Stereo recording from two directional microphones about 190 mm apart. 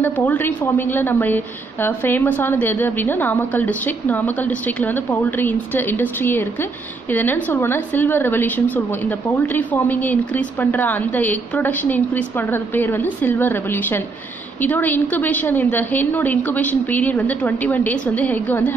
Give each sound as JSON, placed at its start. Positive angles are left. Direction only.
{"t": 0.0, "sound": "a woman's voice", "side_deg": 10}